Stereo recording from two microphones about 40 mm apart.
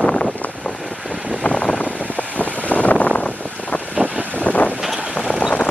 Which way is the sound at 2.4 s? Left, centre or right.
Left.